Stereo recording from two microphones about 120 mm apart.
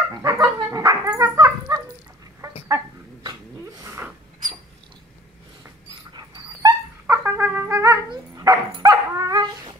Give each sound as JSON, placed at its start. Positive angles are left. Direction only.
{"t": 0.1, "sound": "dog", "side_deg": -25}
{"t": 3.8, "sound": "dog", "side_deg": -20}
{"t": 6.1, "sound": "dog", "side_deg": -30}
{"t": 8.1, "sound": "dog", "side_deg": -30}